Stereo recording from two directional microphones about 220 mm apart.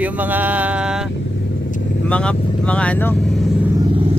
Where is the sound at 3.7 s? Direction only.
25° right (ahead or behind).